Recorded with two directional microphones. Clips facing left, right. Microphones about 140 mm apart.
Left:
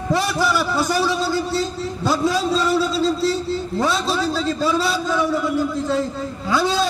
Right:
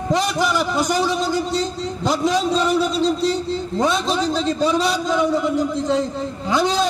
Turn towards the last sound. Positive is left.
turn(degrees=-20)  # may be behind; listen again after turning